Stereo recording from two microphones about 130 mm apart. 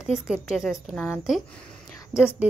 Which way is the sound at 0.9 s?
15° left (ahead or behind).